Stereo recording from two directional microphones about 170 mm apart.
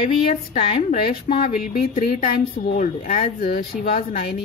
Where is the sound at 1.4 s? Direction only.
55° left (ahead or behind).